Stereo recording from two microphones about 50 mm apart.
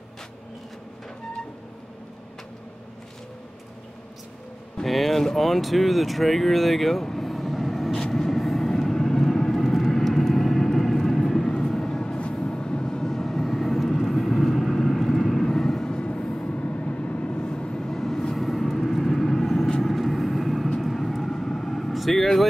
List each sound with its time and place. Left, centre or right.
4.8 s speech: centre
7.9 s vehicle: centre